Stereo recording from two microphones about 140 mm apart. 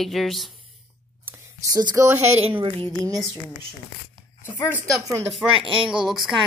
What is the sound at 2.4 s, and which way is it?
Speech, 40° right (ahead or behind).